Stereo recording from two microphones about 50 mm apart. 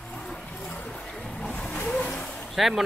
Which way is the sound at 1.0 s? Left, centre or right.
Centre.